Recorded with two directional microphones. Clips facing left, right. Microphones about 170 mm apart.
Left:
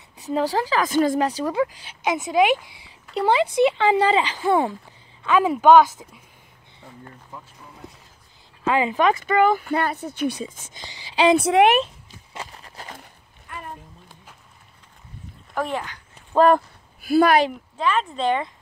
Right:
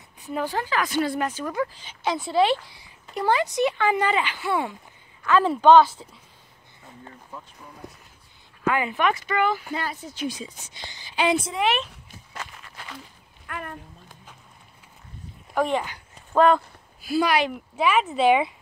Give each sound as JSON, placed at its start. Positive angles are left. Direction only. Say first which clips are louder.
{"t": 0.7, "sound": "speech", "louder": "left 5 dB", "side_deg": 40}
{"t": 2.0, "sound": "a woman's voice", "louder": "left 2 dB", "side_deg": 20}
{"t": 5.2, "sound": "a woman's voice", "louder": "left 1 dB", "side_deg": 15}
{"t": 8.6, "sound": "speech", "louder": "left 3 dB", "side_deg": 25}
{"t": 9.1, "sound": "speech", "louder": "left 6 dB", "side_deg": 50}
{"t": 11.1, "sound": "a woman's voice", "louder": "left 8 dB", "side_deg": 80}
{"t": 12.4, "sound": "a sound", "louder": "left 2 dB", "side_deg": 35}
{"t": 13.5, "sound": "a sound", "louder": "right 1 dB", "side_deg": -65}
{"t": 15.5, "sound": "speech", "louder": "right 3 dB", "side_deg": 0}
{"t": 16.3, "sound": "speech", "louder": "left 2 dB", "side_deg": 45}
{"t": 17.7, "sound": "speech", "louder": "right 2 dB", "side_deg": -10}